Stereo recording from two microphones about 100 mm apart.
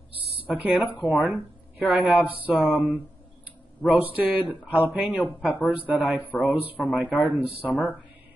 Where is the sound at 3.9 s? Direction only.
15° right (ahead or behind).